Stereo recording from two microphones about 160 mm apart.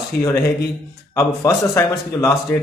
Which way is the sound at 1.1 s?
20° left (ahead or behind).